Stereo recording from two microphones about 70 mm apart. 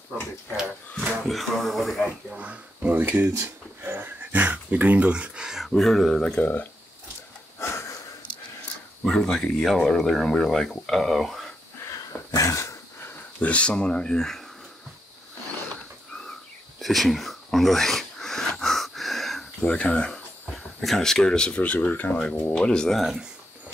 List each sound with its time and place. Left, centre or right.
0.9 s speech: centre
2.0 s speech: centre
5.7 s speech: centre
6.4 s speech: left
7.5 s a sound: left
9.0 s speech: centre
11.8 s a sound: left
13.4 s speech: centre
16.8 s a sound: centre
18.6 s wheeze: centre
19.6 s speech: centre
20.4 s speech: centre; by 22.6 s left
22.6 s speech: centre
22.9 s speech: centre